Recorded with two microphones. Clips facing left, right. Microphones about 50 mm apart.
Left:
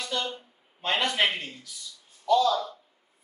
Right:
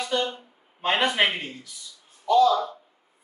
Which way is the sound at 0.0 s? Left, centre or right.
Right.